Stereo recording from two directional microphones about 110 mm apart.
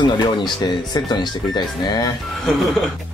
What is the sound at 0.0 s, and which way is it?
Speech, 45° left (ahead or behind).